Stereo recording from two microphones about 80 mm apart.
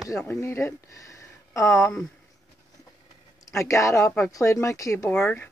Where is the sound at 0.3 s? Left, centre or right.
Left.